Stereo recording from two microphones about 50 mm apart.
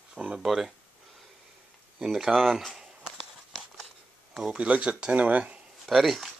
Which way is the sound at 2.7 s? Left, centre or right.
Centre.